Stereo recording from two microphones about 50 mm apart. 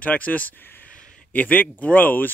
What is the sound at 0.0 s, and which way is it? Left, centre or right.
Speech, left.